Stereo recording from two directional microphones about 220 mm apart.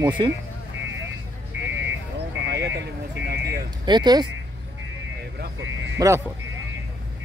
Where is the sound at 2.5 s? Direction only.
50° right (ahead or behind).